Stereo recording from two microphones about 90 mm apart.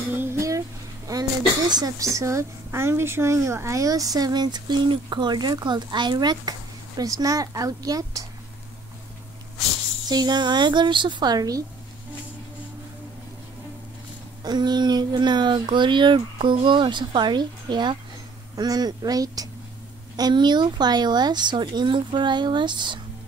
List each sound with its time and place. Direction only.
0.1 s a sound: 25° right (ahead or behind)
0.4 s a sound: 40° right (ahead or behind)
1.7 s a woman's voice: 50° right (ahead or behind)
2.0 s a woman's voice: 35° right (ahead or behind)
10.0 s a woman's voice: 50° right (ahead or behind)
14.4 s a woman's voice: 50° right (ahead or behind)